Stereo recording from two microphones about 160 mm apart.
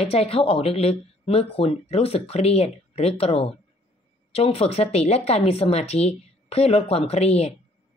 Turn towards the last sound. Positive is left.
turn(degrees=40)  # may be behind; listen again after turning